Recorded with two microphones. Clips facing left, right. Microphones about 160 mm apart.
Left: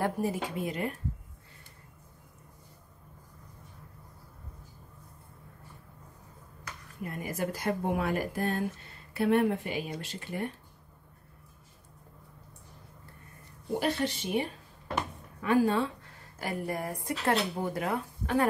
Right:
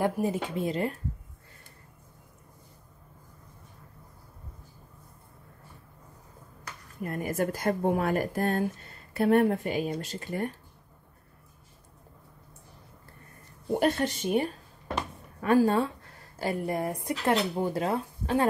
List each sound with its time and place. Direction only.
0.0 s speech: 20° right (ahead or behind)
7.1 s speech: 50° right (ahead or behind)
13.7 s speech: 50° right (ahead or behind)
15.5 s speech: 40° right (ahead or behind)
16.3 s speech: 25° right (ahead or behind)